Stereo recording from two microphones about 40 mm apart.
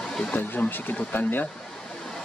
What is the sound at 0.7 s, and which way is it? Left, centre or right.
Speech, left.